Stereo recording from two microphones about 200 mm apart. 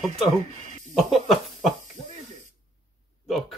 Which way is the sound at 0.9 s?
Centre (ahead or behind).